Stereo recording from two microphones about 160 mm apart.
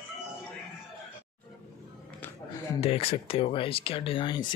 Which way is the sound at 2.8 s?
35° left (ahead or behind).